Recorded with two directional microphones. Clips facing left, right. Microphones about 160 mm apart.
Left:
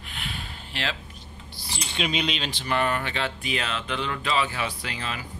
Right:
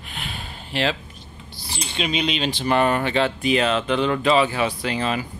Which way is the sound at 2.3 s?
15° right (ahead or behind).